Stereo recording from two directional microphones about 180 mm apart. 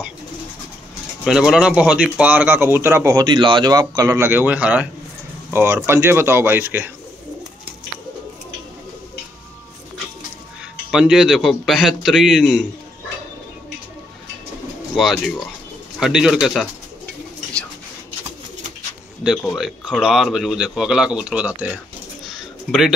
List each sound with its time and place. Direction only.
1.2 s speech: 5° right (ahead or behind)
10.9 s speech: 5° right (ahead or behind)
15.0 s speech: centre (ahead or behind)
19.2 s speech: centre (ahead or behind)
22.3 s bird: centre (ahead or behind)